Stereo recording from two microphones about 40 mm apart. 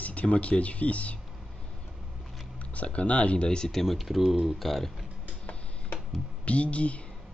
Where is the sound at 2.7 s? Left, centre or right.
Left.